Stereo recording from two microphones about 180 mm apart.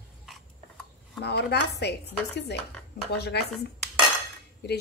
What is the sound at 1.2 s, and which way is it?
Speech, 65° left (ahead or behind).